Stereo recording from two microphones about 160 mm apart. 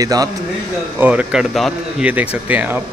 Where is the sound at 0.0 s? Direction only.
25° right (ahead or behind).